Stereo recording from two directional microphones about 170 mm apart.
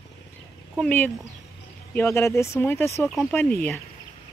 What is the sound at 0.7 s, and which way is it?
Speech, 5° left (ahead or behind).